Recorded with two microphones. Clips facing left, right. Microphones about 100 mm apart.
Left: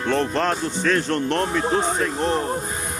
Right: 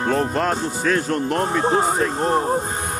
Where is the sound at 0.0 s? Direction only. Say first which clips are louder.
Right 1 dB; 5° right (ahead or behind).